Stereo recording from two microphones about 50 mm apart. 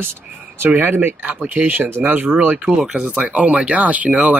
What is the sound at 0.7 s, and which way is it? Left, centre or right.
Speech, right.